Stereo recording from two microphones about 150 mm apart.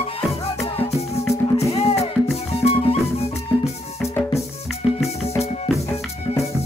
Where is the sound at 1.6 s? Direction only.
45° left (ahead or behind).